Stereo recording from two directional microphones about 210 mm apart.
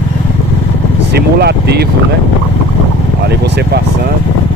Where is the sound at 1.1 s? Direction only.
50° right (ahead or behind).